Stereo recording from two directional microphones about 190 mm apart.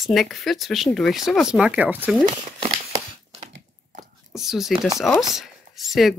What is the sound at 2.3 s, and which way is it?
Speech, 25° right (ahead or behind).